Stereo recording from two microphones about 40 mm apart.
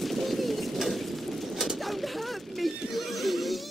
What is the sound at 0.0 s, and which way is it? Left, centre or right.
Bird, centre.